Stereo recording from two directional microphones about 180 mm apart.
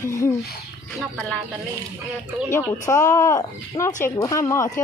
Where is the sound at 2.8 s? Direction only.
20° left (ahead or behind).